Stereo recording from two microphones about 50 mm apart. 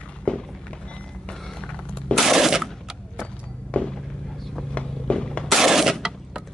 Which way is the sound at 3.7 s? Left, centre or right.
Centre.